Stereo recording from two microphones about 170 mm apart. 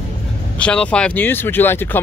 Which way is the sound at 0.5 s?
5° left (ahead or behind).